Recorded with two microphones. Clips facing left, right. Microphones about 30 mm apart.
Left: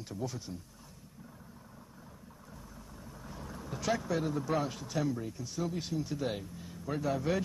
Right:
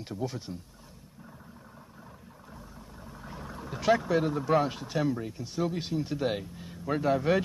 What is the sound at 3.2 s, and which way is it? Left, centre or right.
Speech, right.